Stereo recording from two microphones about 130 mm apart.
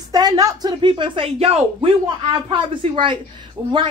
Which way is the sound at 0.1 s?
30° right (ahead or behind).